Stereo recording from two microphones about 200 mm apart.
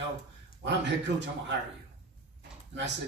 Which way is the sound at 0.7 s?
60° right (ahead or behind).